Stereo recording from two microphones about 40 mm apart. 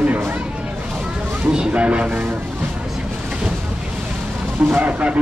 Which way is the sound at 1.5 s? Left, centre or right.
Right.